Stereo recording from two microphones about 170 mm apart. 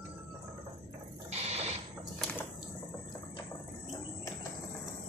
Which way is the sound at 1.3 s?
40° right (ahead or behind).